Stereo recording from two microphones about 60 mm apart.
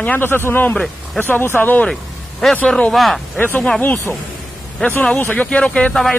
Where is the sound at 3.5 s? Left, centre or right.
Centre.